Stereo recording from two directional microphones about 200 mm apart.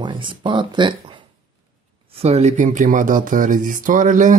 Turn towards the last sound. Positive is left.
turn(degrees=-40)  # may be behind; listen again after turning